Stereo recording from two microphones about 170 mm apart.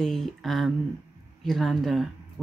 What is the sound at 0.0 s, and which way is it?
Speech, 5° left (ahead or behind).